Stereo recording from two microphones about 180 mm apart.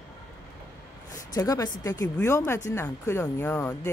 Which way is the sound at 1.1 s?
20° left (ahead or behind).